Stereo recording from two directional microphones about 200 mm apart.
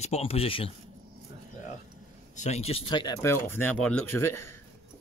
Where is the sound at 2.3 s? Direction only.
35° left (ahead or behind); by 4.5 s 10° left (ahead or behind).